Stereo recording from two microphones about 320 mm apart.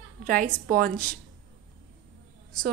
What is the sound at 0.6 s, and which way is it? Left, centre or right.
Speech, right.